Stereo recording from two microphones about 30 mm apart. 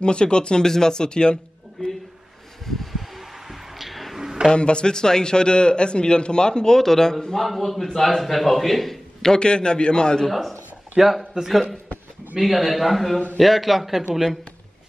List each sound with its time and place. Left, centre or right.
0.0 s speech: left
0.7 s a man's voice: centre
2.6 s a sound: centre
4.6 s a man's voice: left
6.8 s speech: centre
7.4 s a man's voice: centre
9.4 s a man's voice: left
11.0 s a man's voice: centre
12.4 s a man's voice: centre